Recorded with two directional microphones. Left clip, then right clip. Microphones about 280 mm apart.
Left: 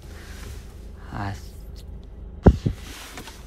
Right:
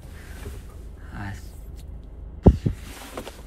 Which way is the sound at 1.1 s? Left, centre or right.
Centre.